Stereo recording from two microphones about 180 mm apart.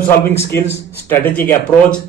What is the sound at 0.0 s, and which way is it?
Speech, 15° left (ahead or behind).